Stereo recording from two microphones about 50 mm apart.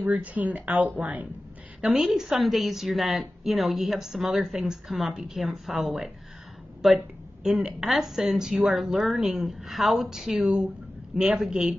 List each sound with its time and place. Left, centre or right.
0.0 s speech: right
1.8 s a woman's voice: centre